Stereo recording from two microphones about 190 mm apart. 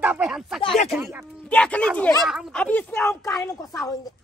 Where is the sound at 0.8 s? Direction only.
Centre (ahead or behind).